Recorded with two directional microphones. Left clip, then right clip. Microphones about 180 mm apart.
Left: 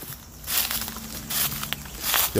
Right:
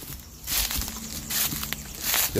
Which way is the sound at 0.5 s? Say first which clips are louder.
Left 1 dB; 10° left (ahead or behind).